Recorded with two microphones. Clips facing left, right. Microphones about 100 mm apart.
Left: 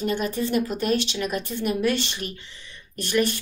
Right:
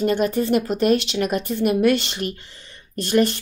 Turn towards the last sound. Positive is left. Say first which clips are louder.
# right 5 dB
turn(degrees=-40)  # may be behind; listen again after turning